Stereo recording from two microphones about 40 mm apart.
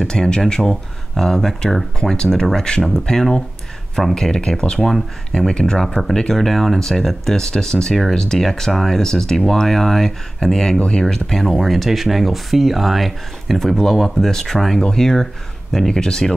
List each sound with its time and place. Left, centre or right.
0.0 s speech: centre